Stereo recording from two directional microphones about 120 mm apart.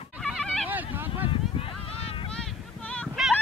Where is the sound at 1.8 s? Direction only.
55° left (ahead or behind).